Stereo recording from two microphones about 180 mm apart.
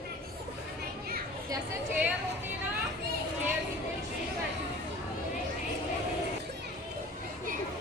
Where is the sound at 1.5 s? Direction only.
15° right (ahead or behind).